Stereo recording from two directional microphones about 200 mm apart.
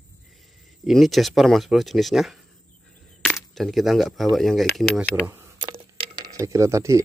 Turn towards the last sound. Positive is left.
turn(degrees=-15)  # may be behind; listen again after turning